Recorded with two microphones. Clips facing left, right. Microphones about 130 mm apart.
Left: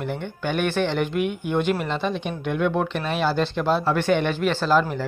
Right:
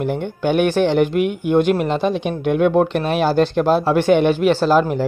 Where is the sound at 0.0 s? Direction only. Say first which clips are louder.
Right 8 dB; 55° right (ahead or behind).